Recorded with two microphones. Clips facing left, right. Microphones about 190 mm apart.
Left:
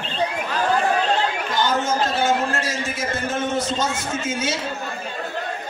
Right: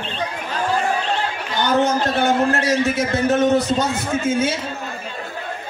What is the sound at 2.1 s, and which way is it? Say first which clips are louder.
A man's voice: right 3 dB; 60° right (ahead or behind).